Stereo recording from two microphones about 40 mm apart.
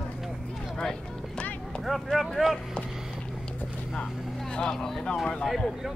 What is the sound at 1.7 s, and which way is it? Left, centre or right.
Vehicle, left.